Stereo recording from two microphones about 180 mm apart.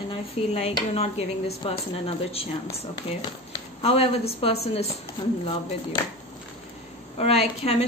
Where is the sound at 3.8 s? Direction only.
35° left (ahead or behind).